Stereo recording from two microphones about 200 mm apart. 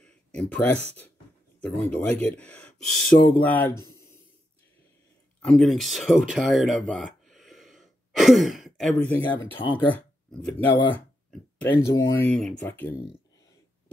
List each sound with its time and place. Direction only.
0.0 s a sound: 5° left (ahead or behind)
1.6 s speech: 5° left (ahead or behind)
5.4 s speech: centre (ahead or behind)
9.6 s speech: 25° left (ahead or behind)
9.9 s a sound: 5° left (ahead or behind)
10.7 s speech: 25° left (ahead or behind)
11.7 s speech: 15° left (ahead or behind)